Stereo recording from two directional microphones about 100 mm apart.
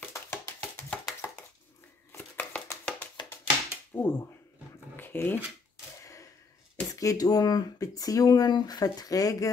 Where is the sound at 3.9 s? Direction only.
20° left (ahead or behind).